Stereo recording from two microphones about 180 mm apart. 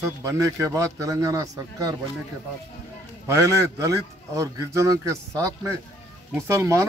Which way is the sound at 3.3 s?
15° right (ahead or behind).